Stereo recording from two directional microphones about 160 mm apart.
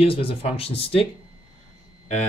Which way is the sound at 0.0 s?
35° left (ahead or behind).